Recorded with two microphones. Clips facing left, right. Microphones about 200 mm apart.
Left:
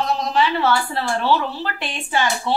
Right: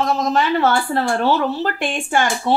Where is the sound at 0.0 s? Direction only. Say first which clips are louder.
Right 2 dB; 45° right (ahead or behind).